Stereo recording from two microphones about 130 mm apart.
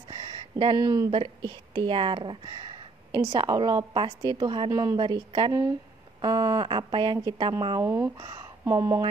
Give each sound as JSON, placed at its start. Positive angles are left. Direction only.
{"t": 0.1, "sound": "a sound", "side_deg": -40}
{"t": 1.1, "sound": "a woman's voice", "side_deg": -40}
{"t": 5.5, "sound": "a woman's voice", "side_deg": -25}
{"t": 7.8, "sound": "speech", "side_deg": -20}